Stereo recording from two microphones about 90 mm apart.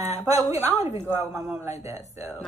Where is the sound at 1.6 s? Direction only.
35° right (ahead or behind).